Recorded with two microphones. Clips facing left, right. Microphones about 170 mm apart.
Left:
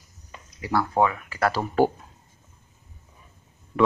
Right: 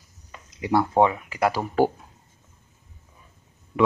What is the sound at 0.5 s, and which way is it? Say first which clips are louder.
Speech: right 3 dB; 20° right (ahead or behind).